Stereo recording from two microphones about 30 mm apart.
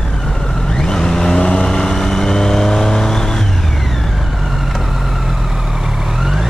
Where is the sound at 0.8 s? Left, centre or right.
Left.